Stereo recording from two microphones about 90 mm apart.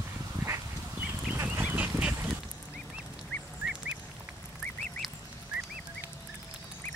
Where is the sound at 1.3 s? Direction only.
20° right (ahead or behind).